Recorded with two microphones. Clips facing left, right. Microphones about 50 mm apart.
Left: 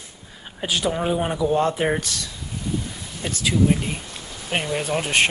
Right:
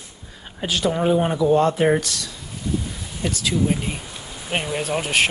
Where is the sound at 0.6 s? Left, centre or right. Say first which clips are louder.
Right 2 dB; centre.